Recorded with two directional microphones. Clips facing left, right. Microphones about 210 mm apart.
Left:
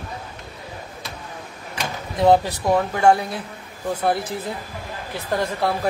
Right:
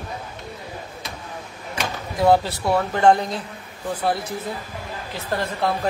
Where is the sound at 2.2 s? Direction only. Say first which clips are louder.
Left 1 dB; 20° left (ahead or behind).